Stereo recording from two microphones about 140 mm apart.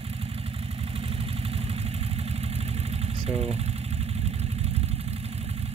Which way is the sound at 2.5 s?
45° right (ahead or behind).